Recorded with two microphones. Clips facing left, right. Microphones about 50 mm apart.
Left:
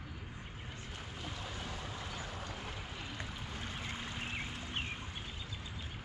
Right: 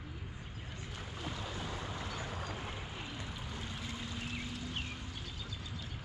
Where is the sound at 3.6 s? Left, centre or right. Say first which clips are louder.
Left 2 dB; left.